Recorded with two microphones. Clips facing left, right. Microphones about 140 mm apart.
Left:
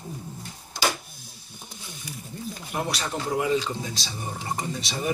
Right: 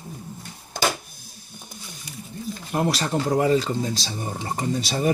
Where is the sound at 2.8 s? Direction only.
40° right (ahead or behind).